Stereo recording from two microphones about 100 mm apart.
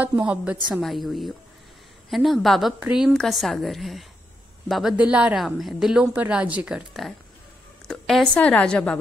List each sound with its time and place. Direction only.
0.0 s a woman's voice: 15° right (ahead or behind)
0.7 s a woman's voice: centre (ahead or behind)
4.9 s a woman's voice: 10° right (ahead or behind)
5.4 s a woman's voice: centre (ahead or behind)